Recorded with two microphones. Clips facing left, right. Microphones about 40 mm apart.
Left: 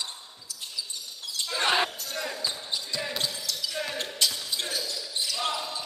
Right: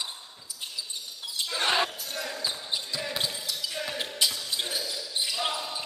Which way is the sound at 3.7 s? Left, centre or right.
Centre.